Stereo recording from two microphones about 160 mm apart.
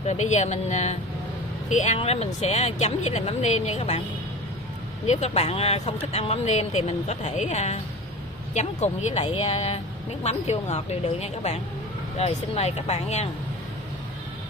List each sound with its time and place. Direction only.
0.0 s speech: 45° left (ahead or behind)
5.0 s speech: 45° left (ahead or behind)